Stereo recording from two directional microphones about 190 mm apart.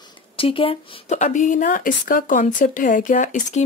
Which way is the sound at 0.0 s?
30° left (ahead or behind).